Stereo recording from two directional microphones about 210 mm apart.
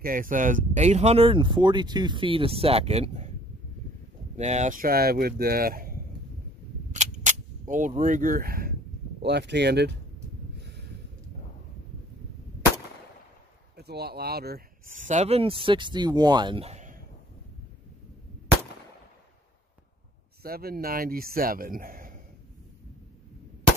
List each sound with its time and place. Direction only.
0.0 s speech: 40° right (ahead or behind)
4.4 s speech: 35° right (ahead or behind)
6.9 s cap gun: 35° right (ahead or behind)
9.2 s speech: 55° right (ahead or behind)
13.7 s speech: 50° right (ahead or behind)
20.4 s speech: 45° right (ahead or behind)